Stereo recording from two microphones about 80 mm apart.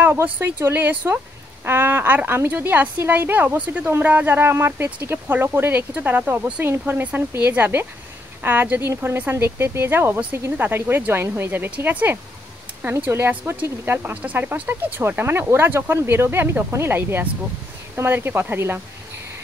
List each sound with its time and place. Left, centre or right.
0.0 s speech: right